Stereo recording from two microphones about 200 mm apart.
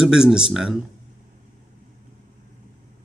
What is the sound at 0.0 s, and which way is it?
Speech, 5° right (ahead or behind).